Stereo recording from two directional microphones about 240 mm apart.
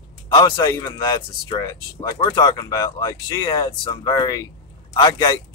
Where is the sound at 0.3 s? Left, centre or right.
Centre.